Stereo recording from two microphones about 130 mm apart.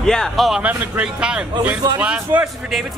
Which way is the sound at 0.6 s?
10° right (ahead or behind).